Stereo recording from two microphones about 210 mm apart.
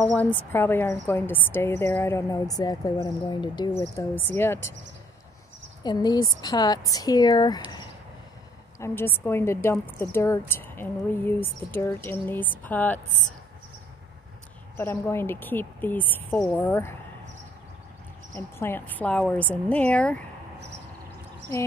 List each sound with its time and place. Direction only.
0.1 s a woman's voice: 10° left (ahead or behind)
5.9 s speech: 20° left (ahead or behind)
8.7 s a woman's voice: 10° left (ahead or behind)
14.8 s a woman's voice: 10° left (ahead or behind)
18.3 s a woman's voice: 10° left (ahead or behind)